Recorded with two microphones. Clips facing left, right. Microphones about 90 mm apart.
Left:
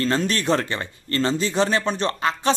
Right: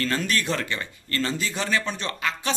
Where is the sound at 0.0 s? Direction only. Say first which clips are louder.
Left 4 dB; 30° left (ahead or behind).